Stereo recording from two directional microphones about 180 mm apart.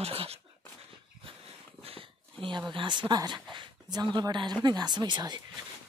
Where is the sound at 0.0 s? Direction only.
35° right (ahead or behind).